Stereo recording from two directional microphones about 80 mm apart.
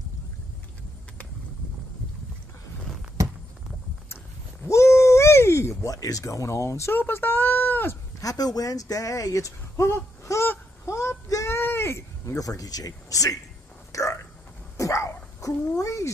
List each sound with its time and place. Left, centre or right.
4.6 s a sound: left
7.0 s speech: left
8.2 s speech: left
10.9 s child singing: left
11.5 s a sound: left
13.9 s hiccup: left
14.8 s dog: left
15.8 s speech: left